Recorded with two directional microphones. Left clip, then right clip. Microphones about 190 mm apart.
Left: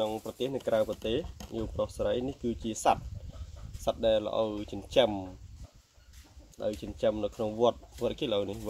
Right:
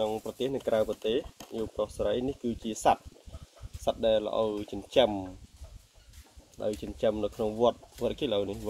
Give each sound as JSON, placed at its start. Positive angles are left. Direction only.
{"t": 0.0, "sound": "speech", "side_deg": 25}
{"t": 6.8, "sound": "speech", "side_deg": 20}